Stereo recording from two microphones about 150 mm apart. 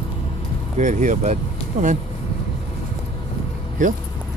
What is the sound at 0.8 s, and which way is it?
Speech, 55° right (ahead or behind).